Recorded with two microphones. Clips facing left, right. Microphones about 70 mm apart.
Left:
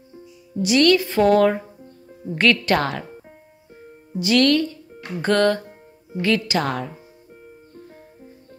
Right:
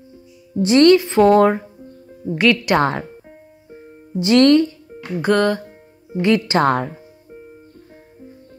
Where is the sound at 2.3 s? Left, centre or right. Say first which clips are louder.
Right 2 dB; centre.